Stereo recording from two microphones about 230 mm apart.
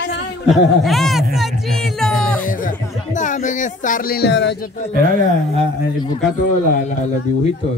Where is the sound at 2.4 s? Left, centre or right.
Left.